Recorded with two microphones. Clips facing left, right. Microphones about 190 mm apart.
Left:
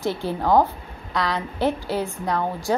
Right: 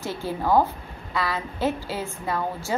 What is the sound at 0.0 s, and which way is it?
A woman's voice, 15° left (ahead or behind).